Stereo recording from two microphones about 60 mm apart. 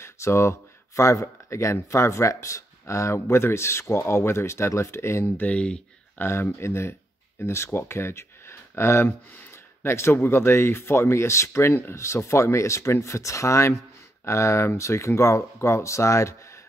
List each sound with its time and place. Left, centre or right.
0.0 s speech: left
5.2 s speech: left
6.1 s speech: left